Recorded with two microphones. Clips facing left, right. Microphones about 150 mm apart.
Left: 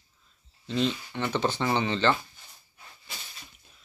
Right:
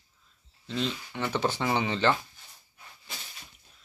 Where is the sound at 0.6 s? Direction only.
Centre (ahead or behind).